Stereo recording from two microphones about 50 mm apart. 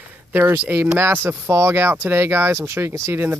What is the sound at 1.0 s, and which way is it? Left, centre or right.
Speech, right.